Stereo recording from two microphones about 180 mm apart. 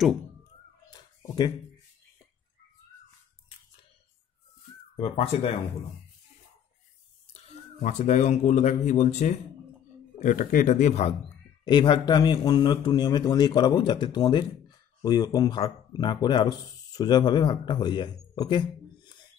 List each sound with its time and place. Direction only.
0.8 s a sound: 20° left (ahead or behind)
4.9 s speech: 35° left (ahead or behind)
7.8 s speech: 40° left (ahead or behind)
11.6 s speech: 25° left (ahead or behind)